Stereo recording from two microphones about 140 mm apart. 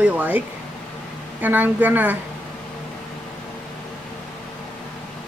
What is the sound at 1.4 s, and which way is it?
Speech, 10° right (ahead or behind).